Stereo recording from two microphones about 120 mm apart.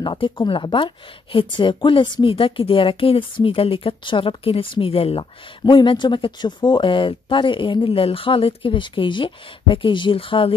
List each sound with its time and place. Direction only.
0.0 s a woman's voice: 40° left (ahead or behind)